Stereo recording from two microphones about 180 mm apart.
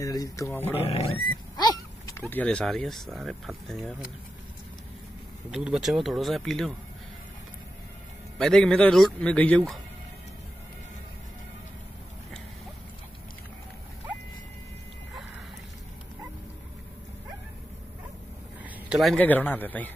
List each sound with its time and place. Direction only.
0.0 s speech: 20° left (ahead or behind)
0.8 s speech: 35° left (ahead or behind); by 3.9 s centre (ahead or behind)
5.5 s a man's voice: 5° right (ahead or behind)
8.4 s a man's voice: 5° left (ahead or behind)
18.6 s a man's voice: 5° right (ahead or behind)